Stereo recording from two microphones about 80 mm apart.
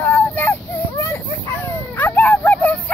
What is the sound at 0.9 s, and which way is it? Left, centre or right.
Chicken, left.